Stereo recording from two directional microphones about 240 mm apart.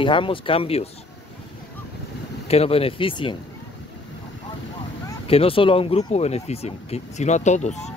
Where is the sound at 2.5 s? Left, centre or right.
Left.